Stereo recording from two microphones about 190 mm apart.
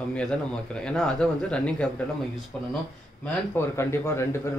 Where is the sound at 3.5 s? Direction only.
15° left (ahead or behind).